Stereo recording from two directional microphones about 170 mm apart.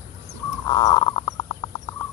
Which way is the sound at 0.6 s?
25° left (ahead or behind).